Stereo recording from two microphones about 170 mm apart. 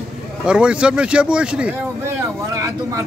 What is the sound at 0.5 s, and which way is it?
Speech, 5° right (ahead or behind).